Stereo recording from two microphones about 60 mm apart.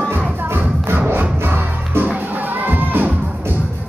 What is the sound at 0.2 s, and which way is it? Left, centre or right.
Music, right.